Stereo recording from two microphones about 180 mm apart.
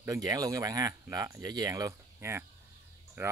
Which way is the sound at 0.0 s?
20° right (ahead or behind).